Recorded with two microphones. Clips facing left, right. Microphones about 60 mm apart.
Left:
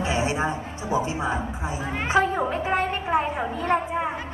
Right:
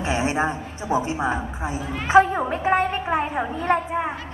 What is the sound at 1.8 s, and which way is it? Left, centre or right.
Speech, left.